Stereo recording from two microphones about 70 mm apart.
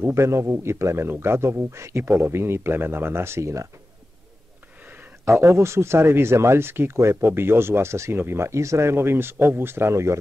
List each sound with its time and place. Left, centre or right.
0.0 s a man's voice: right
5.2 s a man's voice: right